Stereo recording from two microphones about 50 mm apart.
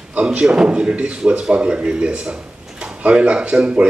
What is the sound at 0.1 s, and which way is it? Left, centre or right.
Speech, right.